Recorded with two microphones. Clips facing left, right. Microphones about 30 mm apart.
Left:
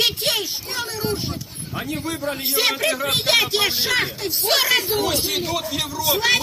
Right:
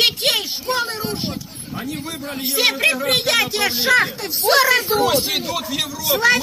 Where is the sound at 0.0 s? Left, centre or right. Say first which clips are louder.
Right 3 dB; right.